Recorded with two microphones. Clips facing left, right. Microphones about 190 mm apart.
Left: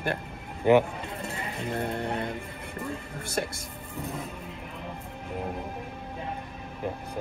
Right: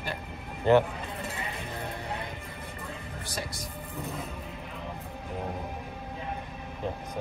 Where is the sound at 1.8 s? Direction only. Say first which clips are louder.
Left 8 dB; 55° left (ahead or behind).